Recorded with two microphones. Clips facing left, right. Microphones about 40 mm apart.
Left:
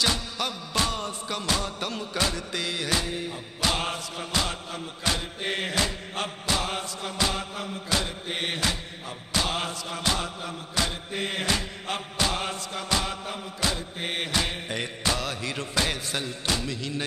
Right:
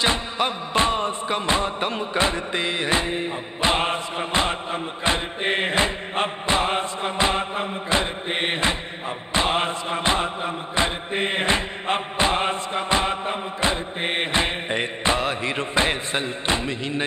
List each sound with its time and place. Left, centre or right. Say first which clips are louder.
0.0 s music: right 5 dB; right